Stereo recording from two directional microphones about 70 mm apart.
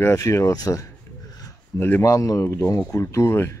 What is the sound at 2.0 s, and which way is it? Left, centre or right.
Speech, left.